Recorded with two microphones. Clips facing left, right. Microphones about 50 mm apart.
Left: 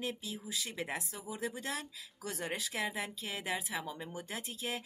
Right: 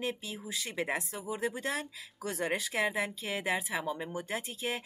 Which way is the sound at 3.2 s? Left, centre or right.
Centre.